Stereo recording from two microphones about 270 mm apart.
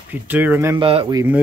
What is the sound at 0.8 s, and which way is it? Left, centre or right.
Speech, centre.